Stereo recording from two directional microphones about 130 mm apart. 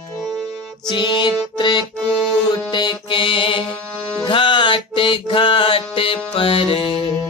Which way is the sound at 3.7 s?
5° left (ahead or behind).